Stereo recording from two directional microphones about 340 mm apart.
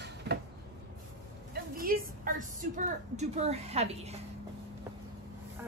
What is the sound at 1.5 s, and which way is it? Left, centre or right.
A woman's voice, right.